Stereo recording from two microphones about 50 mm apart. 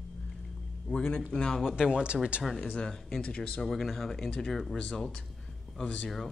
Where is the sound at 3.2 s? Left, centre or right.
Left.